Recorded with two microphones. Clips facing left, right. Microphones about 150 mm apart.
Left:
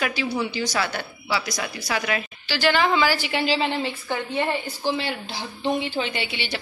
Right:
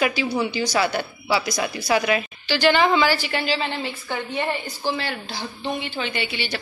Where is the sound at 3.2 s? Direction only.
20° left (ahead or behind).